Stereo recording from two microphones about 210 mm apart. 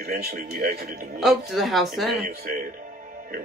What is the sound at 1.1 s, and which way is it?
Speech, centre (ahead or behind).